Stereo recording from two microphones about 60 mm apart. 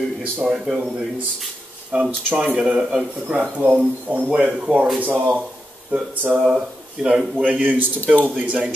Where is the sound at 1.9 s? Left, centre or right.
Centre.